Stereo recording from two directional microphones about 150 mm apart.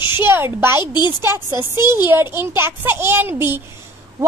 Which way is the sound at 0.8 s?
30° left (ahead or behind).